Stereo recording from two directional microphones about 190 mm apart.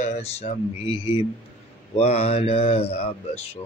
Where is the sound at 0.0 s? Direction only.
35° left (ahead or behind).